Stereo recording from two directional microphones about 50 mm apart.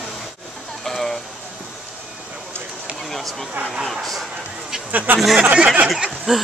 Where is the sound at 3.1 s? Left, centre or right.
Centre.